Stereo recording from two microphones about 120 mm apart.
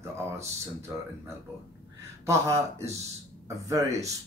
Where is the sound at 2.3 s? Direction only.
25° right (ahead or behind).